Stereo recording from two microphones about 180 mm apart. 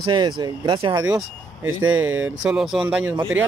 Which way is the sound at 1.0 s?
10° right (ahead or behind).